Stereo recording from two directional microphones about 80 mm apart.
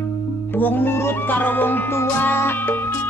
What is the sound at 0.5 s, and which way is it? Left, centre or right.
Music, left.